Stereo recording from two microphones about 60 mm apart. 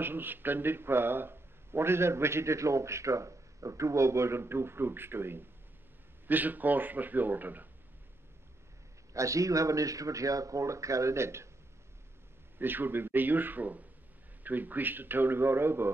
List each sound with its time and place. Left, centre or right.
0.0 s speech: right
6.2 s a man's voice: right
9.1 s speech: right
12.5 s a man's voice: right